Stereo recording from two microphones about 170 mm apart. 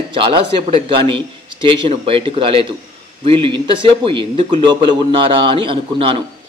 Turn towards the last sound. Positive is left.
turn(degrees=-30)  # may be behind; listen again after turning